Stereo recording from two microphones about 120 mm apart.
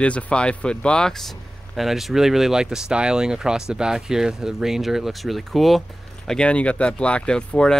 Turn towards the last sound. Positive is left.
turn(degrees=5)  # may be behind; listen again after turning